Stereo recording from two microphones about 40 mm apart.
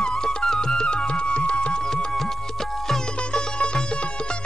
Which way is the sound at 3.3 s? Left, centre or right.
Left.